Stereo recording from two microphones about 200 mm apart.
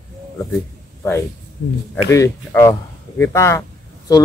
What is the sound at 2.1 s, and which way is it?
A man's voice, 15° left (ahead or behind).